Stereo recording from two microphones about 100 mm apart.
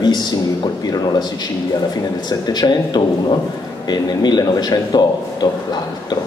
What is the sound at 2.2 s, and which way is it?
A man's voice, 45° left (ahead or behind).